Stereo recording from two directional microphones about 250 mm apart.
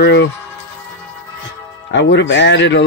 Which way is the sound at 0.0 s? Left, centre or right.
Left.